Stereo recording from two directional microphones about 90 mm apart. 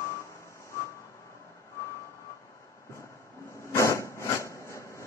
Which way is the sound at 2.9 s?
35° left (ahead or behind).